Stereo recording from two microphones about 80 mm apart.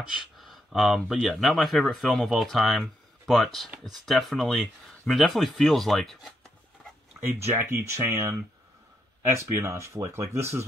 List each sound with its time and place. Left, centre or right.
0.0 s speech: centre
7.2 s speech: right
9.4 s speech: right